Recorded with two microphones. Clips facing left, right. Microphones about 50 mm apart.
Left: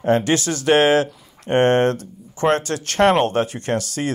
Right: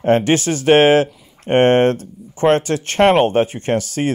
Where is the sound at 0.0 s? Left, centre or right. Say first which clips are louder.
Right 3 dB; right.